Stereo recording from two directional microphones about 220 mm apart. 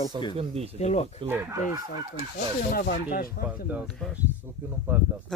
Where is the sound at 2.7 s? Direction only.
45° left (ahead or behind).